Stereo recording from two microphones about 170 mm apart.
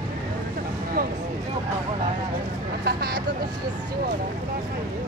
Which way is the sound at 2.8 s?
70° right (ahead or behind).